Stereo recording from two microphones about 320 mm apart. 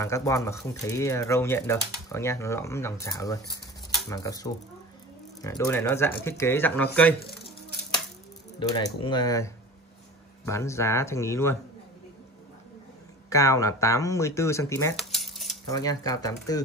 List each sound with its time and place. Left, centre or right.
0.0 s speech: centre
8.5 s speech: centre
13.3 s speech: centre
15.7 s speech: centre